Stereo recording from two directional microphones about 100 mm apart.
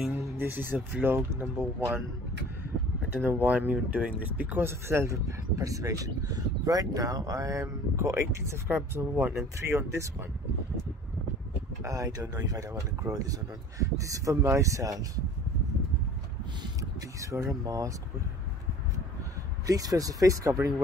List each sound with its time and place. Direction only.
0.2 s a sound: 20° right (ahead or behind)
0.7 s speech: 15° right (ahead or behind)
3.2 s speech: 20° right (ahead or behind)
11.8 s speech: 35° right (ahead or behind)
17.2 s speech: 30° right (ahead or behind)
19.6 s speech: 35° right (ahead or behind)